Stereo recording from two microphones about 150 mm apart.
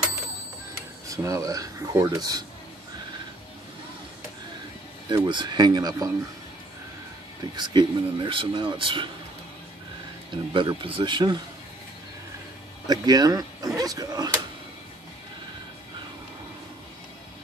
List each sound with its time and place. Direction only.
1.0 s speech: 20° right (ahead or behind)
5.1 s speech: 30° right (ahead or behind)
7.5 s speech: 30° right (ahead or behind)
10.3 s speech: 30° right (ahead or behind)
12.8 s speech: 25° right (ahead or behind)